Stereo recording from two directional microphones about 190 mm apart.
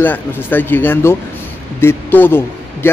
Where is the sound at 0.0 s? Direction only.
10° left (ahead or behind).